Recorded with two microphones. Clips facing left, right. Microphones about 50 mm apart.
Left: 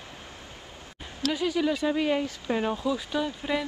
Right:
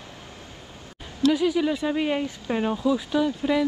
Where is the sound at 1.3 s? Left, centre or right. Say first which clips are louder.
Right 2 dB; centre.